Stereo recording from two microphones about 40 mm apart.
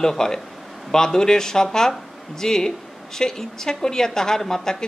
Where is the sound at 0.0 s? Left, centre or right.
Centre.